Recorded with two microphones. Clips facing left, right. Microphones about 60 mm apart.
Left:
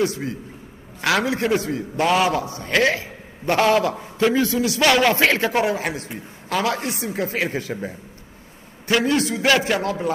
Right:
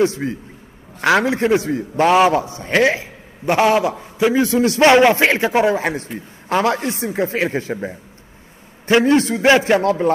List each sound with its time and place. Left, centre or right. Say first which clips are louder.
0.0 s a man's voice: right 5 dB; right; by 4.5 s centre
4.5 s a man's voice: right 6 dB; right
5.7 s speech: right 5 dB; right
8.8 s speech: right 6 dB; right
9.4 s a man's voice: right 5 dB; right